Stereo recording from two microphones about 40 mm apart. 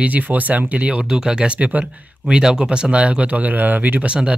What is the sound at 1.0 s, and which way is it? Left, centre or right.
Speech, centre.